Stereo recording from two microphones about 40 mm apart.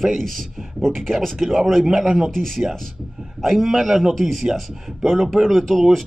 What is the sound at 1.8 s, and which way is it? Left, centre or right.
Speech, centre.